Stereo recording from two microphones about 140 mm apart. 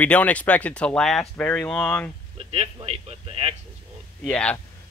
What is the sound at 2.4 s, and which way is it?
Speech, 45° right (ahead or behind).